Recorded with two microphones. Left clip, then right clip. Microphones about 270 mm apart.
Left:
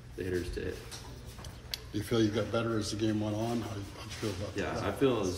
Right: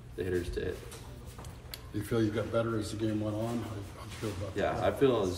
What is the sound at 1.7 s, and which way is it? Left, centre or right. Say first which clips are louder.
Speech: left 1 dB; left.